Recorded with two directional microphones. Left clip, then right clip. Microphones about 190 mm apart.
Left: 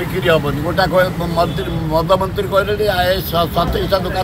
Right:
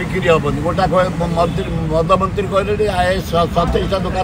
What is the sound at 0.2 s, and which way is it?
Speech, 5° right (ahead or behind).